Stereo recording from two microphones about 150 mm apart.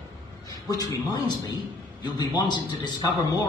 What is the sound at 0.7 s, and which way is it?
Speech, 25° left (ahead or behind).